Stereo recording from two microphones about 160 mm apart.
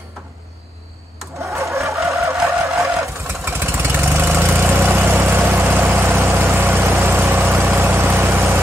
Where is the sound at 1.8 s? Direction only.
Centre (ahead or behind).